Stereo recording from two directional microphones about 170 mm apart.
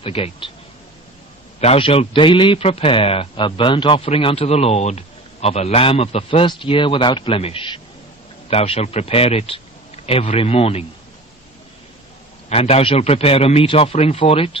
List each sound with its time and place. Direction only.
0.0 s a man's voice: 35° left (ahead or behind)
1.6 s a man's voice: 35° left (ahead or behind)
12.4 s a man's voice: 35° left (ahead or behind)